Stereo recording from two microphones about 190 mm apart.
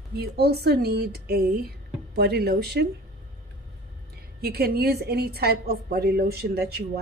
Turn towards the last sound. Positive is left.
turn(degrees=-55)  # may be behind; listen again after turning